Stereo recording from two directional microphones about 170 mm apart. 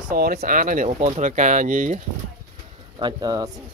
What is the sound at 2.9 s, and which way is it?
Speech, 25° right (ahead or behind).